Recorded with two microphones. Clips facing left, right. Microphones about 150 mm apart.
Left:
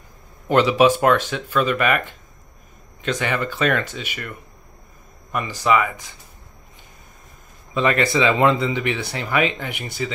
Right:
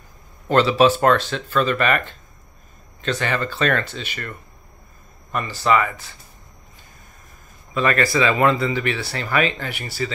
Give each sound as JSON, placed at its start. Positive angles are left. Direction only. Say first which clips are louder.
{"t": 0.5, "sound": "speech", "louder": "even", "side_deg": 15}
{"t": 7.7, "sound": "speech", "louder": "left 1 dB", "side_deg": 20}